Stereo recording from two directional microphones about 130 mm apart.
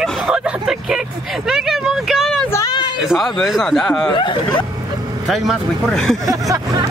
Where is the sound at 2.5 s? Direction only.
30° left (ahead or behind).